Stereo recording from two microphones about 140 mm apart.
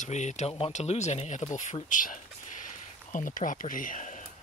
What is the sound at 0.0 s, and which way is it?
Speech, 55° left (ahead or behind).